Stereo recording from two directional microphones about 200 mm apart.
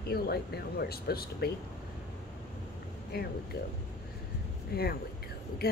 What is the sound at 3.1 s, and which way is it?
Speech, 50° left (ahead or behind).